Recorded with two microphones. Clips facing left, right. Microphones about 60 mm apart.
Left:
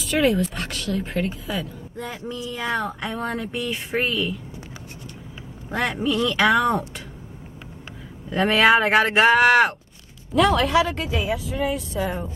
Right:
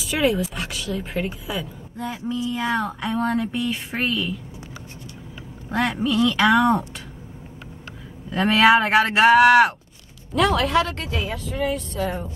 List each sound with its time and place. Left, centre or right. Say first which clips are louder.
0.0 s speech: left 1 dB; centre
5.7 s speech: right 1 dB; centre
8.3 s speech: right 1 dB; centre